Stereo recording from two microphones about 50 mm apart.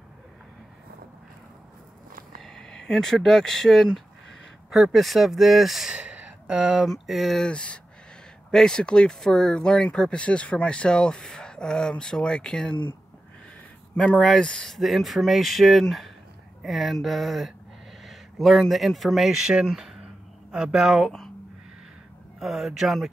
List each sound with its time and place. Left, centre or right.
2.4 s a sound: centre
4.6 s speech: centre
5.9 s a sound: right
6.9 s speech: centre
7.4 s speech: left
13.9 s speech: left
14.7 s speech: centre
22.4 s speech: centre